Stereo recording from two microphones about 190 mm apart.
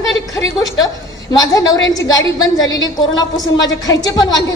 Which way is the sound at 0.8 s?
20° left (ahead or behind).